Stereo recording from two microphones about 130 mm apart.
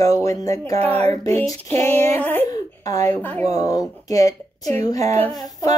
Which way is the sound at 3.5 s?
25° left (ahead or behind).